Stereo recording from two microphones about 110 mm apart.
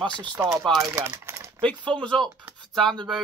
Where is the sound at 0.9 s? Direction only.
20° right (ahead or behind).